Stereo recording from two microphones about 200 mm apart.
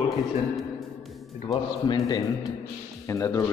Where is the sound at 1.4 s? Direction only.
25° left (ahead or behind).